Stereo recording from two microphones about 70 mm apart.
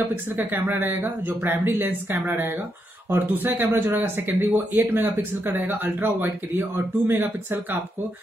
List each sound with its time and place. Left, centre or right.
0.5 s speech: right